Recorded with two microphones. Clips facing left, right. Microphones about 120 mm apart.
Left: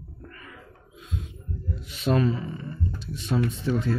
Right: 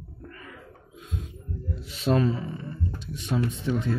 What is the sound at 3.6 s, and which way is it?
Speech, 20° right (ahead or behind).